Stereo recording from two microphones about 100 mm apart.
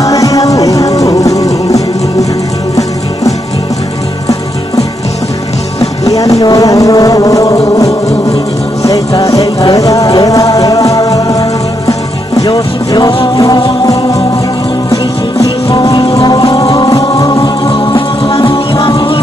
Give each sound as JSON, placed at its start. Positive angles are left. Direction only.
{"t": 0.0, "sound": "music", "side_deg": 35}
{"t": 5.8, "sound": "music", "side_deg": 35}
{"t": 15.4, "sound": "music", "side_deg": 40}
{"t": 17.6, "sound": "music", "side_deg": 60}